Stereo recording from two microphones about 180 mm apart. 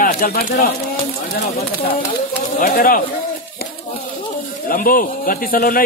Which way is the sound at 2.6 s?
50° left (ahead or behind).